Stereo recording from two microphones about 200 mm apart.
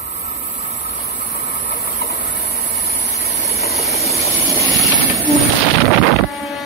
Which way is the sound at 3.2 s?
35° left (ahead or behind).